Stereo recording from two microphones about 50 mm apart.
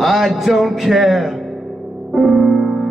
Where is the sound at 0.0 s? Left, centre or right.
Centre.